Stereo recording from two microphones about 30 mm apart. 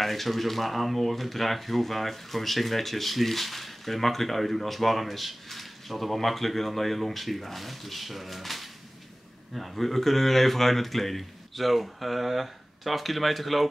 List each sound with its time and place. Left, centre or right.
0.0 s speech: centre